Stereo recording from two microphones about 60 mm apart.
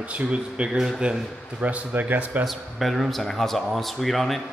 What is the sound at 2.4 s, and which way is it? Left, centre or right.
Speech, centre.